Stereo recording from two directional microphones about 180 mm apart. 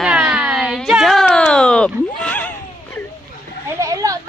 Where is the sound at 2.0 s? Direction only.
5° left (ahead or behind).